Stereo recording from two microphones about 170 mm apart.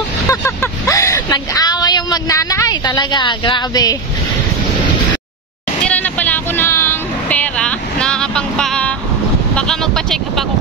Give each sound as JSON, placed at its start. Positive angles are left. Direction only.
{"t": 0.3, "sound": "speech", "side_deg": 20}
{"t": 5.9, "sound": "a sound", "side_deg": 10}
{"t": 9.6, "sound": "speech", "side_deg": 5}